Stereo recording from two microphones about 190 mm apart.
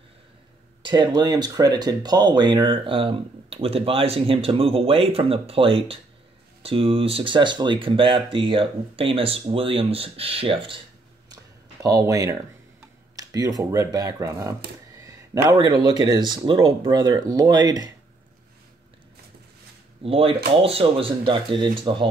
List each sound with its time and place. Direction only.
0.8 s speech: 25° right (ahead or behind)
11.8 s speech: 15° right (ahead or behind)
20.0 s speech: 30° right (ahead or behind)